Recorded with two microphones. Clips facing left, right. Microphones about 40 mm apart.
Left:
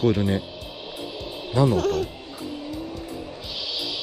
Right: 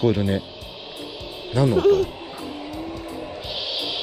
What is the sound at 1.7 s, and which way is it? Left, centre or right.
Speech, centre.